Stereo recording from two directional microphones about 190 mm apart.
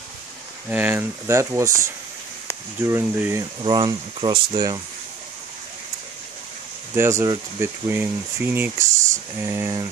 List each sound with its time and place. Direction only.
0.7 s speech: 10° right (ahead or behind)
3.6 s speech: 25° right (ahead or behind)
7.0 s speech: 15° right (ahead or behind)